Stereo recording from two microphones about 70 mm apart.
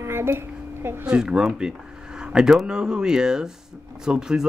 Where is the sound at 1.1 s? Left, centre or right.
Centre.